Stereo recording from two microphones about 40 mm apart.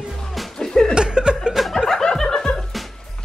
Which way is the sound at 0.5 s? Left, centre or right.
Centre.